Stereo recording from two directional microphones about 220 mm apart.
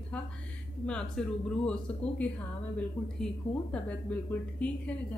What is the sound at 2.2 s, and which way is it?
Speech, 5° left (ahead or behind).